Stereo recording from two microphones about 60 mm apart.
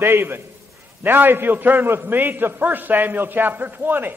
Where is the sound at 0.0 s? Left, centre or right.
Right.